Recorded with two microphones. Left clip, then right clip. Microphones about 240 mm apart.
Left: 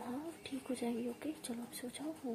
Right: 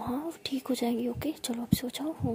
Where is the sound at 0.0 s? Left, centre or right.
Right.